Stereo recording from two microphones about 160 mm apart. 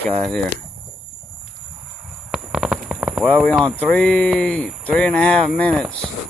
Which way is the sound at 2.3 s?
5° right (ahead or behind).